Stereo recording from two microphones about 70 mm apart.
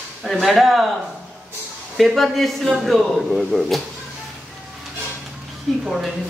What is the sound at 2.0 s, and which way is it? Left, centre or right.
A man's voice, centre.